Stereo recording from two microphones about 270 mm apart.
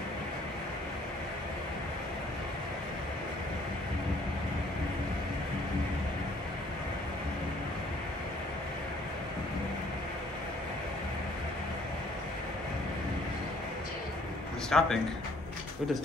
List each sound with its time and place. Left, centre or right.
14.7 s speech: centre